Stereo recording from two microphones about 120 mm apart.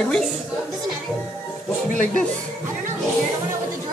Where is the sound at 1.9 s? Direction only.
90° left.